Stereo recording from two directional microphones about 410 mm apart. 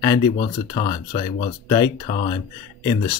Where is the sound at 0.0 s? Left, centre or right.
Centre.